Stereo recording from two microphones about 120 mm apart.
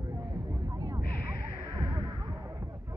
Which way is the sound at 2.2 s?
25° right (ahead or behind).